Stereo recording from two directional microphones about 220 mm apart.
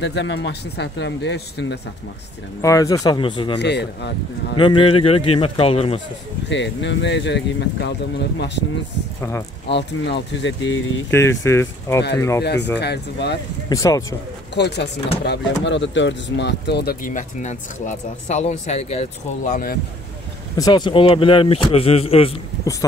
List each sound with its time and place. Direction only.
0.0 s speech: 55° left (ahead or behind)
2.6 s speech: 15° left (ahead or behind)
3.5 s speech: 50° left (ahead or behind)
4.6 s speech: 20° left (ahead or behind)
6.5 s speech: 55° left (ahead or behind)
9.7 s speech: 50° left (ahead or behind)
11.1 s speech: 10° left (ahead or behind)
12.7 s speech: 50° left (ahead or behind)
13.7 s speech: 15° left (ahead or behind)
14.5 s speech: 50° left (ahead or behind)
20.5 s speech: 20° left (ahead or behind)